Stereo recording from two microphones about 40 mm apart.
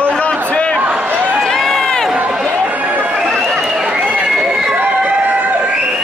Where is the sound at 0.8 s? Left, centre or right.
Right.